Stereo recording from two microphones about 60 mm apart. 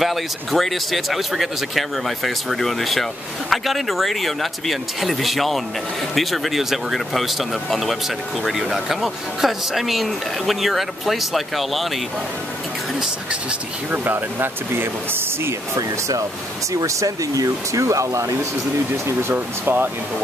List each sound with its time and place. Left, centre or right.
0.0 s speech: centre
13.3 s speech: right
15.7 s speech: right
19.3 s speech: right